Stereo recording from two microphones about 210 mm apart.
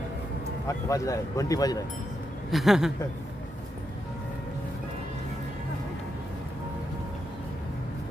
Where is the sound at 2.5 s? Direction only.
Centre (ahead or behind).